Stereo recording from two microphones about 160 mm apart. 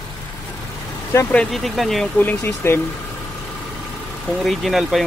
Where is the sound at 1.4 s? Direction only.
Centre (ahead or behind).